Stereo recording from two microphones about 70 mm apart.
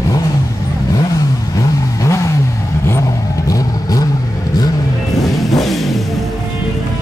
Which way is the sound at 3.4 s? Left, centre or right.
Left.